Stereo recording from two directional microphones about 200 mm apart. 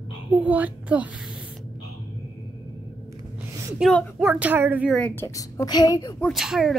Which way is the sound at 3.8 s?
Centre (ahead or behind).